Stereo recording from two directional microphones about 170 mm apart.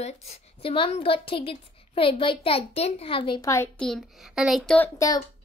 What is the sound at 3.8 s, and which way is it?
A child's voice, centre (ahead or behind).